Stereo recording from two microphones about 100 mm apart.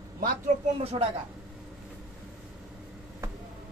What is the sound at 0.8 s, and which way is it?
Speech, 80° right.